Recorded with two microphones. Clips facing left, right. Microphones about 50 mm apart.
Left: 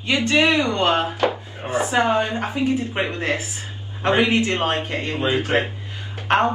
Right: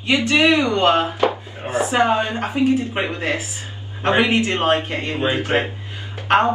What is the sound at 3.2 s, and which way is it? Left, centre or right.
A man's voice, right.